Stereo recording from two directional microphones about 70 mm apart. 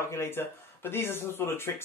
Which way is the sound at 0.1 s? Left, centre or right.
Left.